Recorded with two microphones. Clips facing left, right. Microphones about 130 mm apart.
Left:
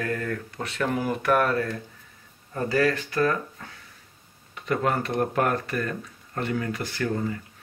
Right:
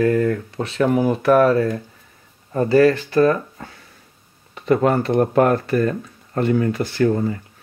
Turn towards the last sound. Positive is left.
turn(degrees=-30)  # may be behind; listen again after turning